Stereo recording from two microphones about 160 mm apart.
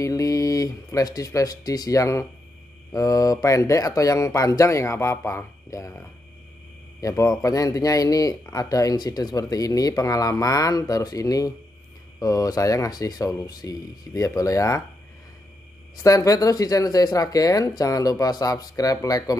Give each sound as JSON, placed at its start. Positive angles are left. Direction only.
{"t": 0.0, "sound": "speech", "side_deg": 20}
{"t": 16.0, "sound": "speech", "side_deg": 20}